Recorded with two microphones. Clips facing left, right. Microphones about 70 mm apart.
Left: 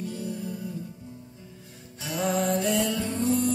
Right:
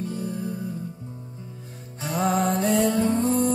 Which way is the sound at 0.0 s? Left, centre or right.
Right.